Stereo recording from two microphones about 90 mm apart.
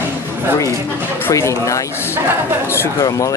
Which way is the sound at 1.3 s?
35° left (ahead or behind).